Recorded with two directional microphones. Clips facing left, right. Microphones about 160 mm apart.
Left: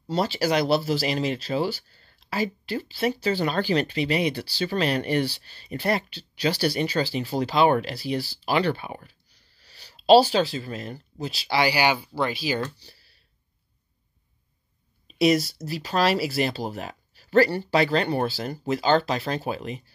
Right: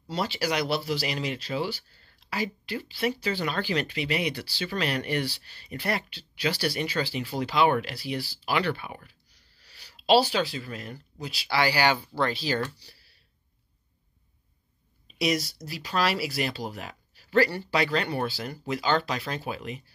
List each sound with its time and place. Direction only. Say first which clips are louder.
0.0 s speech: left 5 dB; 35° left (ahead or behind)
0.7 s speech: left 5 dB; 45° left (ahead or behind)
1.0 s speech: left 5 dB; 30° left (ahead or behind); by 12.6 s 10° left (ahead or behind)
15.1 s speech: left 7 dB; 30° left (ahead or behind)